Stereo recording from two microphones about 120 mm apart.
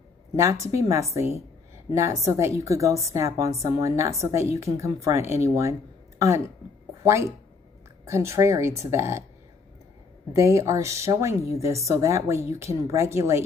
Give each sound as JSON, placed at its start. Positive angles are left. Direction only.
{"t": 0.4, "sound": "a woman's voice", "side_deg": -25}
{"t": 10.3, "sound": "a woman's voice", "side_deg": -25}